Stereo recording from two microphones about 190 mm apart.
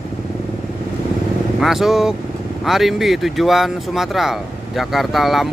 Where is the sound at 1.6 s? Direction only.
Centre (ahead or behind).